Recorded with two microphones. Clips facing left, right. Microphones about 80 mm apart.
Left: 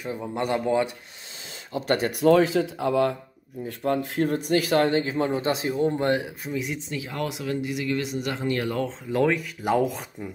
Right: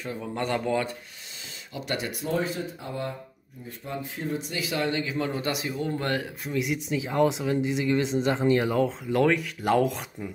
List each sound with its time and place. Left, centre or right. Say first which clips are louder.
0.2 s speech: left 2 dB; centre
1.7 s speech: left 7 dB; left
2.1 s speech: left 13 dB; left
3.6 s speech: left 9 dB; left
6.4 s speech: right 2 dB; centre
6.9 s speech: right 6 dB; centre
8.7 s speech: right 2 dB; centre